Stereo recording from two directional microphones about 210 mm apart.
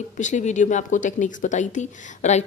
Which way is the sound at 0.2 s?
35° left (ahead or behind).